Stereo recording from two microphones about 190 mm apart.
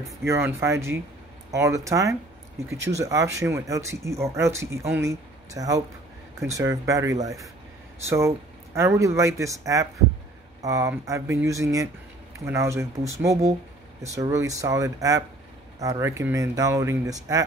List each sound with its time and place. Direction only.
0.0 s speech: 15° right (ahead or behind)